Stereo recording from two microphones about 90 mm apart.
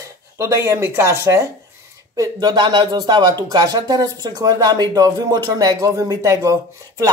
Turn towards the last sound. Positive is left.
turn(degrees=-35)  # may be behind; listen again after turning